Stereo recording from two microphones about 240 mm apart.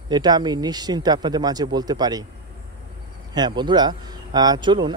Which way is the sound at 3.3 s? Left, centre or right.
Centre.